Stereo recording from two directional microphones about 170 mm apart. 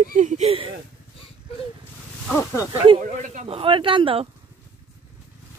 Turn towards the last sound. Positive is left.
turn(degrees=-30)  # may be behind; listen again after turning